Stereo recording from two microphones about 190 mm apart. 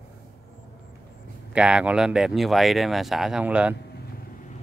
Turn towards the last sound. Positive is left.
turn(degrees=-5)  # may be behind; listen again after turning